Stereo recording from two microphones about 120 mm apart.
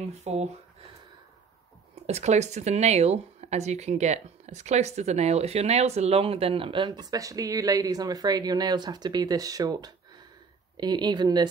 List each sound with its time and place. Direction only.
0.2 s speech: 65° right (ahead or behind)
2.0 s speech: 70° right (ahead or behind); by 11.4 s 35° right (ahead or behind)